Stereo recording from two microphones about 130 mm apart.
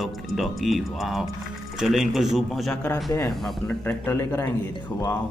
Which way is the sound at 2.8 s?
15° left (ahead or behind).